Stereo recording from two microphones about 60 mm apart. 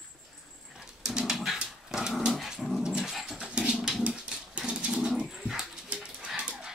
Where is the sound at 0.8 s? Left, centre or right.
Centre.